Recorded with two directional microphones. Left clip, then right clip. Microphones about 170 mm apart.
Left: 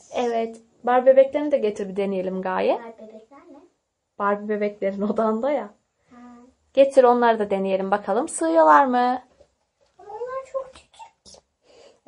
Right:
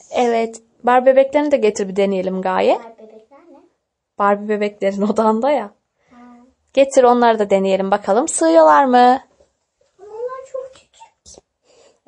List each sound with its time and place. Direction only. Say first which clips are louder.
0.1 s a woman's voice: right 7 dB; 45° right (ahead or behind)
4.2 s a woman's voice: right 7 dB; 45° right (ahead or behind)
6.7 s a woman's voice: right 3 dB; 40° right (ahead or behind)
11.2 s a sound: right 4 dB; 5° left (ahead or behind)